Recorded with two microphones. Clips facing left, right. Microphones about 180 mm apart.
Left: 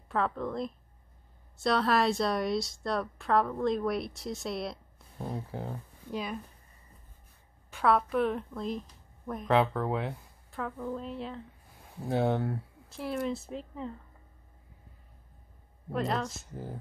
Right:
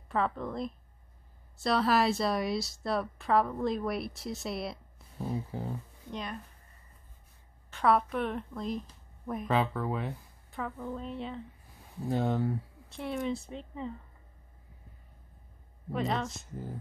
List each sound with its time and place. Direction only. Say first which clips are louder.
0.1 s a woman's voice: left 1 dB; centre (ahead or behind)
7.7 s a woman's voice: left 1 dB; centre (ahead or behind)
12.1 s speech: left 2 dB; 70° left (ahead or behind)
12.4 s a woman's voice: right 2 dB; centre (ahead or behind)
15.9 s a woman's voice: left 1 dB; centre (ahead or behind)